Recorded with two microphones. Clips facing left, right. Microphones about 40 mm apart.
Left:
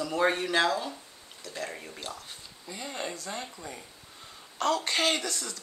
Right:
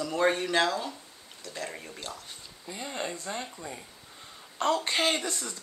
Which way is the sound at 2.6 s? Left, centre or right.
Centre.